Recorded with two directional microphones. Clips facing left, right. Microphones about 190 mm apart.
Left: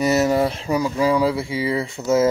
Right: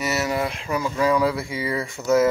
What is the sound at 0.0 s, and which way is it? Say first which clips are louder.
Speech: left 7 dB; 40° left (ahead or behind).